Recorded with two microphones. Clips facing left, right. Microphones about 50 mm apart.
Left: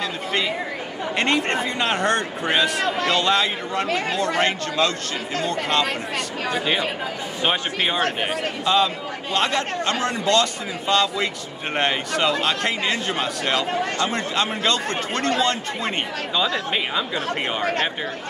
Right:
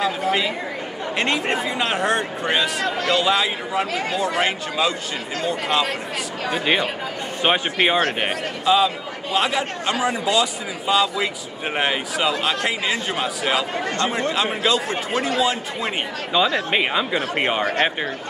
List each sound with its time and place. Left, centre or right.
0.0 s a sound: centre
1.1 s a man's voice: centre
8.6 s a man's voice: centre
16.3 s speech: centre